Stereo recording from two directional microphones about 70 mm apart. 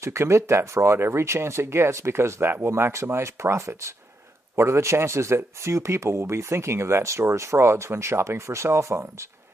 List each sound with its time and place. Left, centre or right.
0.0 s speech: right